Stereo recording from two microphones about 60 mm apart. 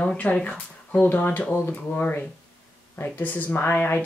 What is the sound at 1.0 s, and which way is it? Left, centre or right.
Speech, left.